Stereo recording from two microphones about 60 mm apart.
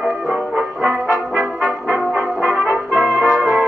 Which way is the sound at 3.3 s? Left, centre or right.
Right.